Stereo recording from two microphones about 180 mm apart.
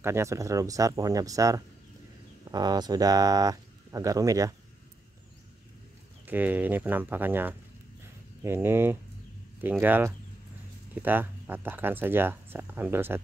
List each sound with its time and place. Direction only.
0.0 s speech: 15° right (ahead or behind)
6.2 s speech: 10° right (ahead or behind)